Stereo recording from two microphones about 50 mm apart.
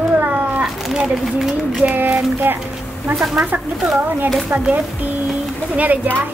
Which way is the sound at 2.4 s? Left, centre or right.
Right.